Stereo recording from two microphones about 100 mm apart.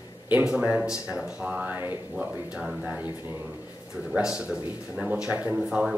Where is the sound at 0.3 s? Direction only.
15° right (ahead or behind).